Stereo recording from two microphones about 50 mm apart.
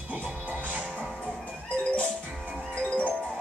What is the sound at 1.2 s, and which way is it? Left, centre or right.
Music, left.